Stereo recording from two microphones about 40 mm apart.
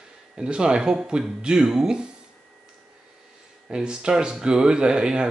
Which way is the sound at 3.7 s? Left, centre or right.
Right.